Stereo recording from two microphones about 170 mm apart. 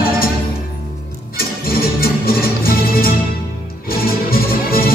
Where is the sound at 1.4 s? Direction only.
60° left (ahead or behind).